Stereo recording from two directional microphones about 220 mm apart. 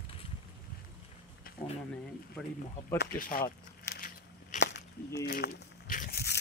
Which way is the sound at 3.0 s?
40° left (ahead or behind).